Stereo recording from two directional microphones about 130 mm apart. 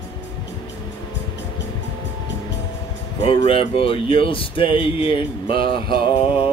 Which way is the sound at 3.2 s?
50° left (ahead or behind).